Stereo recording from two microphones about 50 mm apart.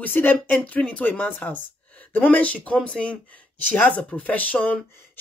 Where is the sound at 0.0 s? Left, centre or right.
Left.